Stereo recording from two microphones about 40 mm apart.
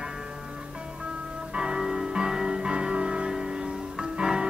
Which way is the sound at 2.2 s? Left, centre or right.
Centre.